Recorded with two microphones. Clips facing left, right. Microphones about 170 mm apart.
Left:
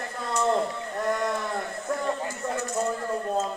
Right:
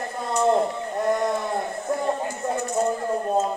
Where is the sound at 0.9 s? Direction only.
15° right (ahead or behind).